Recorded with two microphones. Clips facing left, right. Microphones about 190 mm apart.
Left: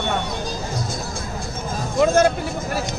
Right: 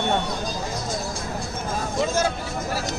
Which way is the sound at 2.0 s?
55° left (ahead or behind).